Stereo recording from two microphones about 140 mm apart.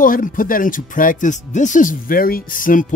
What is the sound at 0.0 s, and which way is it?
A man's voice, 75° left (ahead or behind).